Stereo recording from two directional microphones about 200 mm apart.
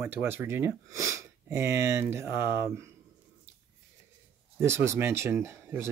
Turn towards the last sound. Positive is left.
turn(degrees=-10)  # may be behind; listen again after turning